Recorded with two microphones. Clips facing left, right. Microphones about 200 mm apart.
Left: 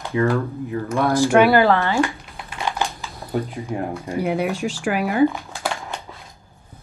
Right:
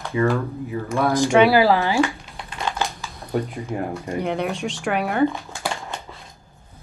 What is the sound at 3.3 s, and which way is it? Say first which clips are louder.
Speech: even; centre (ahead or behind).